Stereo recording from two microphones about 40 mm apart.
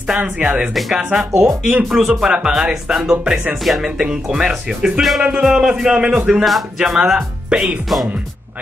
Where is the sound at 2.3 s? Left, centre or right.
Centre.